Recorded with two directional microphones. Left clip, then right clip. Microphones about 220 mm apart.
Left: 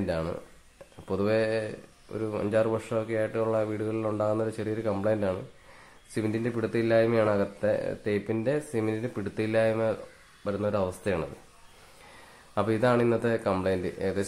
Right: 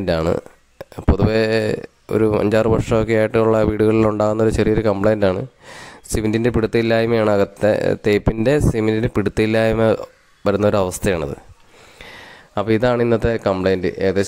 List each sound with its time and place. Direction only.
0.0 s speech: 45° right (ahead or behind)
12.5 s speech: 40° right (ahead or behind)